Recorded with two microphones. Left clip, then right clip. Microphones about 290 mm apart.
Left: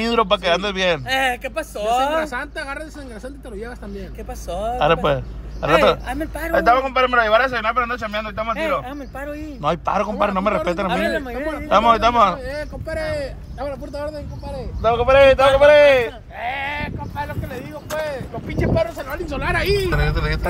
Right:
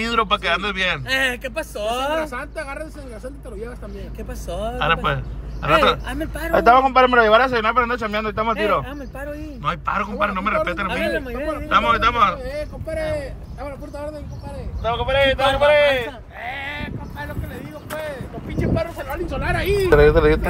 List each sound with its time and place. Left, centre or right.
0.0 s a man's voice: centre
4.5 s a man's voice: centre
9.6 s a man's voice: centre
12.4 s a man's voice: left
15.4 s a man's voice: centre
15.7 s speech: left
20.0 s speech: centre